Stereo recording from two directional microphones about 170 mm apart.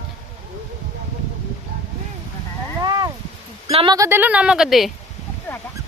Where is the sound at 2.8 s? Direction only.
20° right (ahead or behind).